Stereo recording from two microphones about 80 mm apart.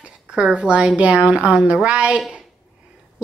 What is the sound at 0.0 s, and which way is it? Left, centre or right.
A woman's voice, centre.